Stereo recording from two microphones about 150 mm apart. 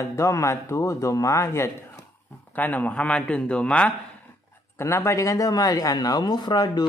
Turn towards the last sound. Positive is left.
turn(degrees=25)  # may be behind; listen again after turning